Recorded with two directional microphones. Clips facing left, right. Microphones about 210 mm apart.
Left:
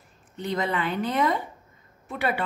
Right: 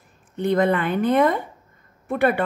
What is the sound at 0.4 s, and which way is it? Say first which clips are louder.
A woman's voice: right 8 dB; 55° right (ahead or behind).